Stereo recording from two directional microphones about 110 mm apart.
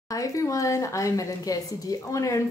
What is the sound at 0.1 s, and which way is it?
A woman's voice, 30° left (ahead or behind).